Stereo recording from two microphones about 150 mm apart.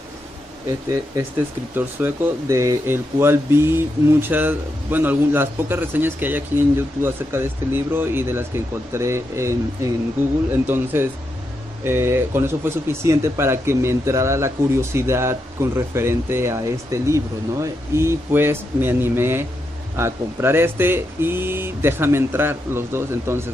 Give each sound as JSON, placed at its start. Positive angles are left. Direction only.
{"t": 1.8, "sound": "speech", "side_deg": -15}